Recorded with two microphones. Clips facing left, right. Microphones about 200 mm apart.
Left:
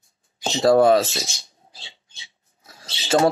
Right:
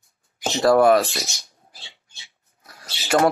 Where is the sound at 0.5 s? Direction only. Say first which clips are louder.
Even; 25° left (ahead or behind).